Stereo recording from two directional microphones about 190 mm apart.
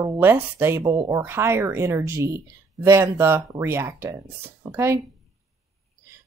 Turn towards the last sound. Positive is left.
turn(degrees=-15)  # may be behind; listen again after turning